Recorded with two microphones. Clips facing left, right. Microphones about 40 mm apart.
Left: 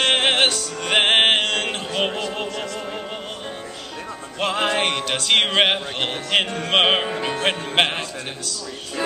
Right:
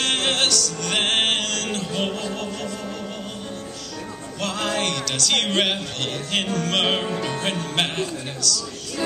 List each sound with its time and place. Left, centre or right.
0.0 s music: left
4.4 s speech: left